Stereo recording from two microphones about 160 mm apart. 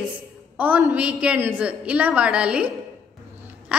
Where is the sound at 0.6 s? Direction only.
10° right (ahead or behind).